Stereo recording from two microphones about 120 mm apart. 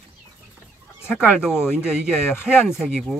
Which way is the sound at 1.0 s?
5° right (ahead or behind).